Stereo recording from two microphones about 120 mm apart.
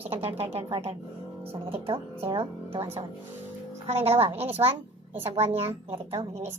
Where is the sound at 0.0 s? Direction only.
60° right (ahead or behind).